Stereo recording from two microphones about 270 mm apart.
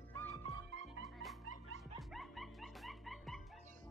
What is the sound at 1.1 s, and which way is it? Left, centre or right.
Music, centre.